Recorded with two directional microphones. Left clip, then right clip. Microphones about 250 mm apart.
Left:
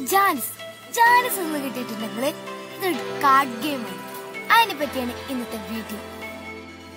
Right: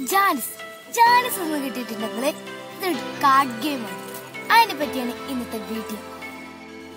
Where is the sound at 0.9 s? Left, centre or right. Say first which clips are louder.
Even; centre.